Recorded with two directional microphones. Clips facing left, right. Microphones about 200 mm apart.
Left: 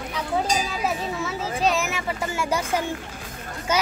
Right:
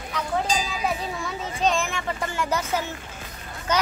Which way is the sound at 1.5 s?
5° left (ahead or behind).